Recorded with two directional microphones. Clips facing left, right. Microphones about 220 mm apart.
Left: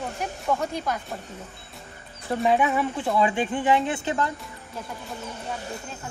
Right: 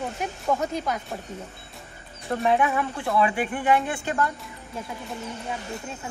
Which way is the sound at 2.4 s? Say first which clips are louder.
Left 1 dB; 20° left (ahead or behind).